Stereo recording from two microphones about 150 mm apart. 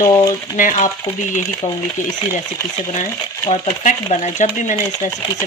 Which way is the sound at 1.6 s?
45° left (ahead or behind).